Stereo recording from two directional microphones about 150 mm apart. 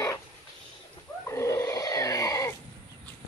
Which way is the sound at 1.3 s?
20° left (ahead or behind).